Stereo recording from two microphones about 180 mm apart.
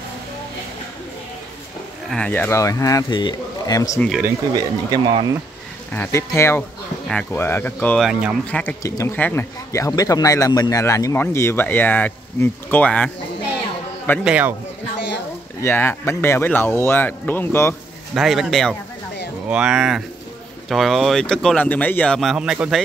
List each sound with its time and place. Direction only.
2.0 s speech: 5° left (ahead or behind)
4.6 s speech: 25° right (ahead or behind)
5.9 s speech: 15° left (ahead or behind)
8.1 s speech: 5° right (ahead or behind)
8.5 s speech: 10° left (ahead or behind)
14.2 s speech: 5° right (ahead or behind)
15.6 s speech: 10° left (ahead or behind)
18.1 s speech: centre (ahead or behind)